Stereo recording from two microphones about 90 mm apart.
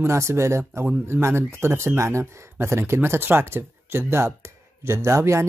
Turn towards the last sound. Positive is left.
turn(degrees=-30)  # may be behind; listen again after turning